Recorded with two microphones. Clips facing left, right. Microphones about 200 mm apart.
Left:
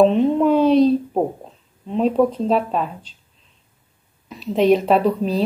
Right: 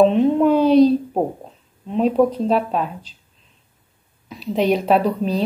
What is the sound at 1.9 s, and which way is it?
Speech, centre (ahead or behind).